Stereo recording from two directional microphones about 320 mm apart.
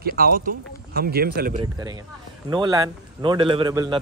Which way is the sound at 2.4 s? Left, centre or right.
Centre.